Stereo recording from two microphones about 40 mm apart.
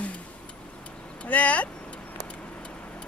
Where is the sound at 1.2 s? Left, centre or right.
Left.